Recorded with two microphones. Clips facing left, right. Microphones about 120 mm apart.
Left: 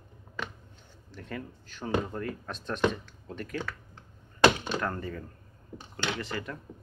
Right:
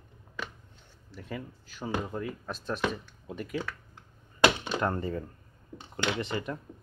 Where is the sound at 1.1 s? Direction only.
5° right (ahead or behind).